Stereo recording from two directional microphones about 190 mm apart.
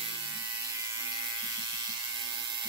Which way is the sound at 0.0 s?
20° right (ahead or behind).